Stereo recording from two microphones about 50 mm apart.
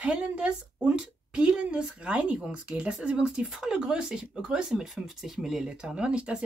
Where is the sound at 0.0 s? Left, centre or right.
Right.